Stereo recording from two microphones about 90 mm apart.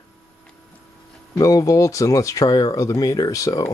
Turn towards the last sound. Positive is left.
turn(degrees=40)  # may be behind; listen again after turning